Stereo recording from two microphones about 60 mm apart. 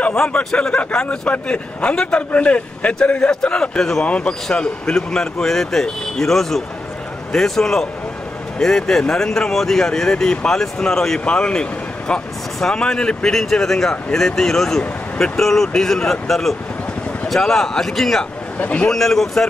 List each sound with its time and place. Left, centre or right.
0.1 s a man's voice: centre
18.6 s a man's voice: left
18.9 s speech: centre